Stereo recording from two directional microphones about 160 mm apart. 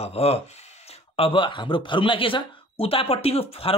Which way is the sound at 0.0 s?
40° left (ahead or behind).